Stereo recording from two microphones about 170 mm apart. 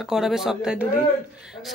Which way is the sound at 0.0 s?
Centre (ahead or behind).